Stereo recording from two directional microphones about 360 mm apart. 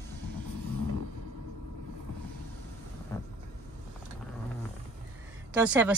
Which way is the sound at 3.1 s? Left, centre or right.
Centre.